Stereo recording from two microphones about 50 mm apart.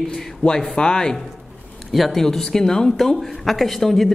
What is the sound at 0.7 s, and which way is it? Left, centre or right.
Speech, centre.